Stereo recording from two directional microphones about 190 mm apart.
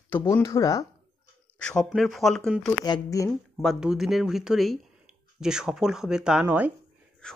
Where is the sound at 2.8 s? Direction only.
20° left (ahead or behind).